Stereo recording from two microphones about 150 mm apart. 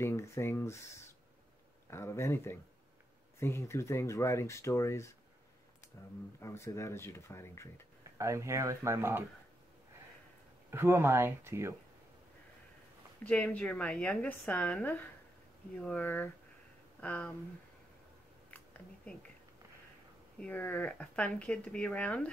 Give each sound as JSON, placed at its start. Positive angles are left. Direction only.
{"t": 0.0, "sound": "speech", "side_deg": 20}
{"t": 1.9, "sound": "speech", "side_deg": 15}
{"t": 6.4, "sound": "speech", "side_deg": 20}
{"t": 8.2, "sound": "speech", "side_deg": -20}
{"t": 10.7, "sound": "speech", "side_deg": -15}
{"t": 13.2, "sound": "speech", "side_deg": 10}
{"t": 18.5, "sound": "a sound", "side_deg": 10}
{"t": 20.3, "sound": "speech", "side_deg": 10}